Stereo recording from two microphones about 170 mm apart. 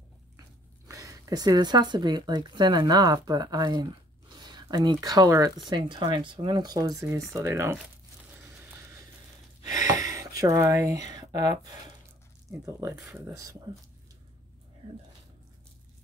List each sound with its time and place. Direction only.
0.8 s speech: 20° right (ahead or behind)
9.6 s a sound: 20° right (ahead or behind)
12.4 s speech: 15° right (ahead or behind)